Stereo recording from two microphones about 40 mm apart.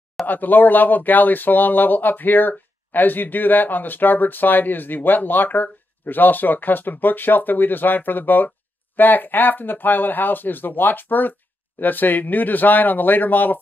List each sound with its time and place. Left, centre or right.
0.3 s speech: left